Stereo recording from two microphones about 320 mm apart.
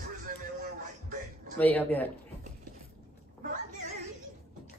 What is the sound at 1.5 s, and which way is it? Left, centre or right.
Speech, centre.